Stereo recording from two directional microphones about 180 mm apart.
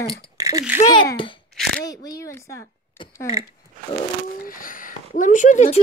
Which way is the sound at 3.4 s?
15° right (ahead or behind).